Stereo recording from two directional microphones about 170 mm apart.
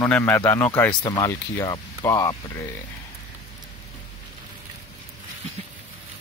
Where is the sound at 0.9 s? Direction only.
25° left (ahead or behind).